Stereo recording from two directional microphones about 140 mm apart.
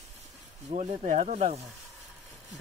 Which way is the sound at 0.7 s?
60° right (ahead or behind).